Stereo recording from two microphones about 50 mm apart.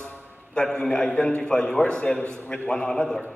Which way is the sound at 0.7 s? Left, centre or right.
Centre.